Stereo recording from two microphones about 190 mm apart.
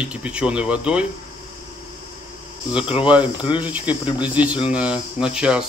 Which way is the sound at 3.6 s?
10° right (ahead or behind).